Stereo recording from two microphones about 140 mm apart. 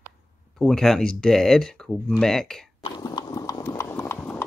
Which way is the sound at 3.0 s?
25° left (ahead or behind).